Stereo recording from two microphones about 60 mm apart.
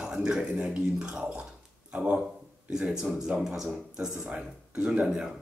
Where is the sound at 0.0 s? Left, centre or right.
Centre.